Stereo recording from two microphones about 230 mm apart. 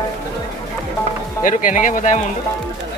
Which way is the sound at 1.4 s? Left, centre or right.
Left.